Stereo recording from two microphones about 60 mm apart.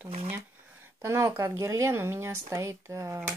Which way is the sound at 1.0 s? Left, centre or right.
Right.